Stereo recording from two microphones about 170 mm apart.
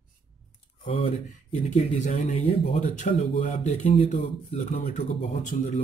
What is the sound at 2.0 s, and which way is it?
Speech, 45° left (ahead or behind).